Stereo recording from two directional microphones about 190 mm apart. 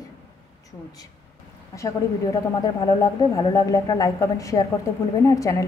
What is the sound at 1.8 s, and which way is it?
Speech, 15° left (ahead or behind).